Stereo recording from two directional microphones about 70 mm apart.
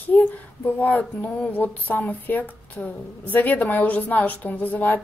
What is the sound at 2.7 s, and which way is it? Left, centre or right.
A woman's voice, left.